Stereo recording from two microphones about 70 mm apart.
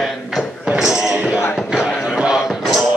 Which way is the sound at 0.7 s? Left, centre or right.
Centre.